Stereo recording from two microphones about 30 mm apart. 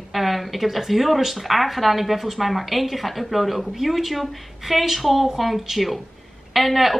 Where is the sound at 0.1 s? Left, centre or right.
Centre.